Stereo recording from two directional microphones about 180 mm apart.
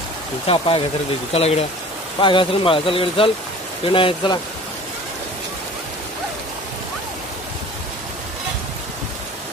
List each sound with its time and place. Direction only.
0.5 s speech: 30° left (ahead or behind)